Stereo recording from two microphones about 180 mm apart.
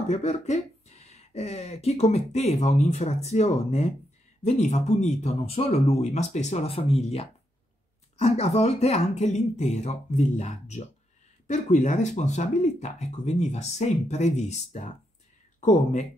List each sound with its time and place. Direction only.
0.1 s speech: 40° left (ahead or behind)